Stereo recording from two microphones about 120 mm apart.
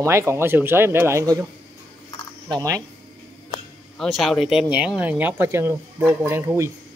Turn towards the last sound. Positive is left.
turn(degrees=-20)  # may be behind; listen again after turning